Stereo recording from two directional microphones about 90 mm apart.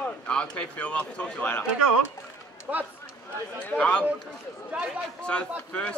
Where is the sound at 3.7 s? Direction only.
15° left (ahead or behind).